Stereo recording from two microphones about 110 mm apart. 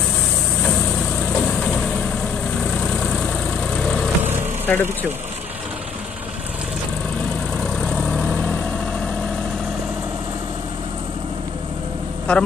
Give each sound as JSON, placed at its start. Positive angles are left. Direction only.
{"t": 2.8, "sound": "vehicle", "side_deg": 5}
{"t": 4.2, "sound": "vehicle", "side_deg": -20}
{"t": 4.7, "sound": "speech", "side_deg": 10}
{"t": 7.8, "sound": "vehicle", "side_deg": 5}
{"t": 12.3, "sound": "speech", "side_deg": 10}